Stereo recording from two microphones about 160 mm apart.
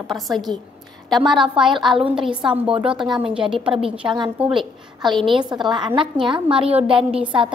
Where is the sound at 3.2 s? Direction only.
35° right (ahead or behind).